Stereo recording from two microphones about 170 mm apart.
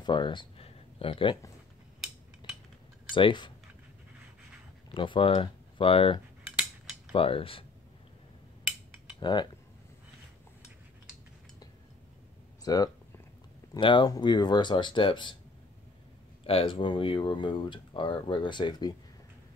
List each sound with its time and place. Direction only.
0.0 s speech: 30° left (ahead or behind)
3.1 s speech: 30° left (ahead or behind)
4.9 s speech: 30° left (ahead or behind)
9.2 s speech: 25° left (ahead or behind)
12.6 s speech: 20° left (ahead or behind)
16.4 s speech: 30° left (ahead or behind)